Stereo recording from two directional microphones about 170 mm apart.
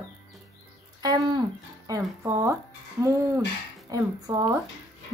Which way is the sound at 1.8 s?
20° right (ahead or behind).